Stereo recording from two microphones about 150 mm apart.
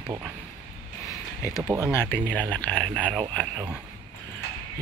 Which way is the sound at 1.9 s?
15° left (ahead or behind).